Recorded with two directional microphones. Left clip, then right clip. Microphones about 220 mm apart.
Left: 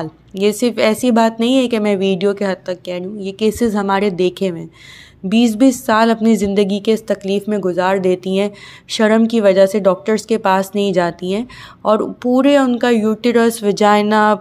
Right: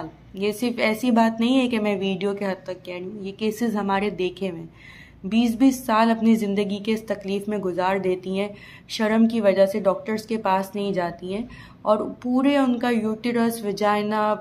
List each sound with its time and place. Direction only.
0.0 s a woman's voice: 30° left (ahead or behind)